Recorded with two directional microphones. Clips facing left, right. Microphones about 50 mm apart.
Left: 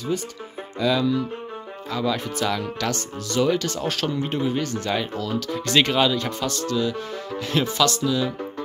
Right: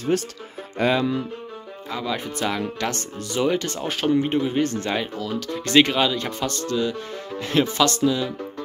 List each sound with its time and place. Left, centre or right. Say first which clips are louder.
0.1 s speech: right 6 dB; right
0.7 s speech: even; right
1.9 s speech: left 2 dB; centre
4.6 s speech: right 1 dB; right
5.2 s speech: left 1 dB; centre